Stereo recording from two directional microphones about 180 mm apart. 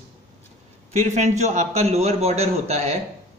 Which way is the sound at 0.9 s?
40° right (ahead or behind).